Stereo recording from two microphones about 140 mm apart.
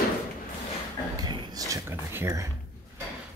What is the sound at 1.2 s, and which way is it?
Speech, 25° right (ahead or behind).